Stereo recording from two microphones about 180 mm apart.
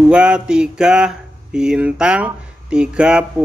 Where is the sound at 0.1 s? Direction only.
5° right (ahead or behind).